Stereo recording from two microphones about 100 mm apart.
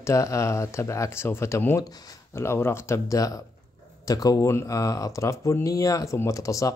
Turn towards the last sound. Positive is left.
turn(degrees=35)  # may be behind; listen again after turning